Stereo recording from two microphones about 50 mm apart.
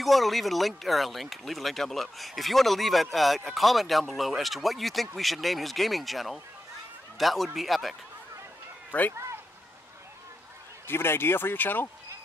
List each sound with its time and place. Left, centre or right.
0.0 s speech: centre
9.1 s a sound: right
10.9 s speech: left